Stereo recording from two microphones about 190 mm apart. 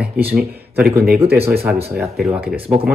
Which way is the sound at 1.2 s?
30° right (ahead or behind).